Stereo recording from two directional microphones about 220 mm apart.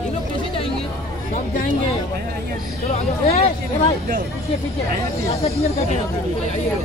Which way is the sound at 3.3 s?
25° left (ahead or behind).